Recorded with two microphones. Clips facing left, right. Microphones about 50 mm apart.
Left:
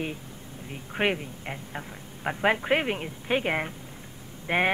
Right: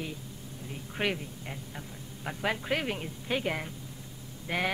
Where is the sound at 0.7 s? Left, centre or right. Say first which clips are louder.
Left 5 dB; left.